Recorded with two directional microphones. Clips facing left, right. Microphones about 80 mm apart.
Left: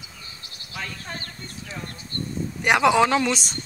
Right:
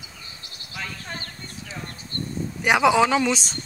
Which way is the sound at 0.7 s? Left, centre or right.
Centre.